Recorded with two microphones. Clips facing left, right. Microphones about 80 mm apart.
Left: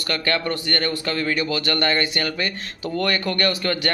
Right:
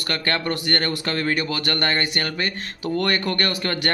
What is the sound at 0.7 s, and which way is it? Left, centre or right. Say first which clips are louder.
Speech: even; right.